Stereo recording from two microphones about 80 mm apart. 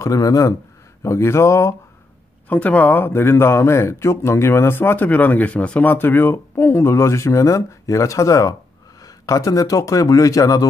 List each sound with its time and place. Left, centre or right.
0.0 s a man's voice: left
2.5 s a man's voice: centre; by 10.7 s left